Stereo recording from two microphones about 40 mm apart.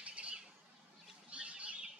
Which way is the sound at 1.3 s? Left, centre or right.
Right.